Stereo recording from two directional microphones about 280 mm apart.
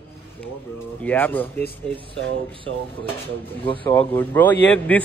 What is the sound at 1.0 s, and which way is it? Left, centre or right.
Speech, centre.